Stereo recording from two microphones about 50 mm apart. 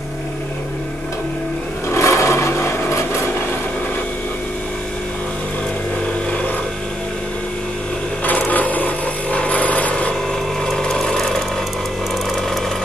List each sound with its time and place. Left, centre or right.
1.9 s filing: left
8.3 s a sound: left
10.6 s sewing machine: centre
11.1 s tools: centre